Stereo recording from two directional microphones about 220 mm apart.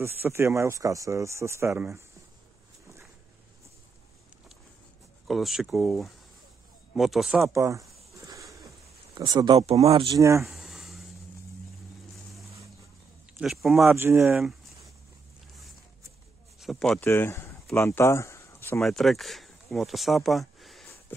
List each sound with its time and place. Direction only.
0.0 s speech: 10° right (ahead or behind)
5.2 s speech: centre (ahead or behind)
7.5 s speech: 15° right (ahead or behind)
9.1 s speech: 20° right (ahead or behind)
10.4 s a sound: centre (ahead or behind)
13.4 s speech: centre (ahead or behind)
16.5 s speech: centre (ahead or behind)
18.8 s speech: centre (ahead or behind)